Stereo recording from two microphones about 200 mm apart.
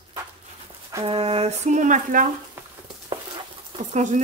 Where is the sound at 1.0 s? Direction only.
30° right (ahead or behind).